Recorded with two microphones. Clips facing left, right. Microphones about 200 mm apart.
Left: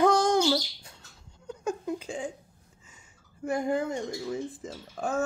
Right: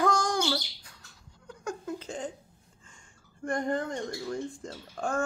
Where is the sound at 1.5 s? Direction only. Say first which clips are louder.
Left 4 dB; 20° left (ahead or behind).